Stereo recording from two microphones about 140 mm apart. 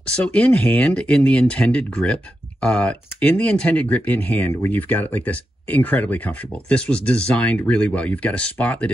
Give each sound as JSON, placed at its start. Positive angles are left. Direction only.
{"t": 0.0, "sound": "speech", "side_deg": 10}